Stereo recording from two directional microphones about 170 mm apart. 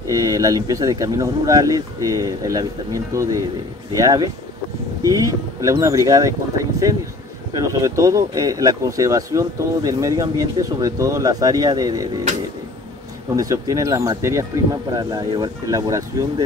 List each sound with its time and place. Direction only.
0.1 s speech: 20° right (ahead or behind)
7.5 s speech: 20° right (ahead or behind)
13.4 s speech: 20° right (ahead or behind)